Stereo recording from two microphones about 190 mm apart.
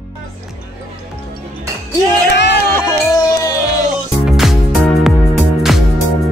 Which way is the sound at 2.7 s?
15° left (ahead or behind).